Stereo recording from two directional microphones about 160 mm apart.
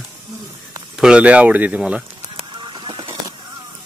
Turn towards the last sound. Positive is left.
turn(degrees=-35)  # may be behind; listen again after turning